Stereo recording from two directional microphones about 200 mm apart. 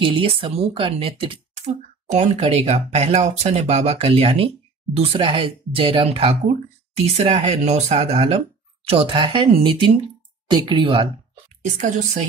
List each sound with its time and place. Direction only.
0.0 s speech: 25° right (ahead or behind)
11.6 s speech: 40° right (ahead or behind)